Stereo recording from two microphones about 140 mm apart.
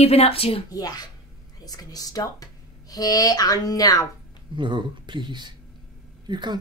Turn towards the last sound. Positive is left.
turn(degrees=-30)  # may be behind; listen again after turning